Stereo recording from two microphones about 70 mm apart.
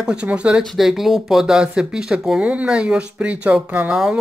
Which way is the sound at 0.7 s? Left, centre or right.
Centre.